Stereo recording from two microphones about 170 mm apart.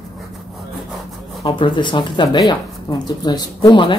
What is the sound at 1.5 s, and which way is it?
Speech, 30° left (ahead or behind).